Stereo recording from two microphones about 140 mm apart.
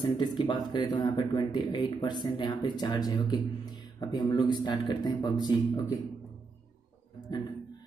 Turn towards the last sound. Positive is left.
turn(degrees=30)  # may be behind; listen again after turning